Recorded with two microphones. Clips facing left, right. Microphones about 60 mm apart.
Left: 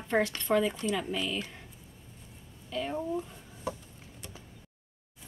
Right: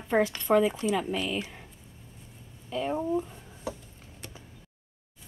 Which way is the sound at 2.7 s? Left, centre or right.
Centre.